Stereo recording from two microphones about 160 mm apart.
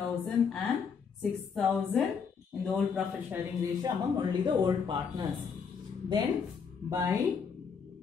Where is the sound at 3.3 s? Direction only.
25° right (ahead or behind).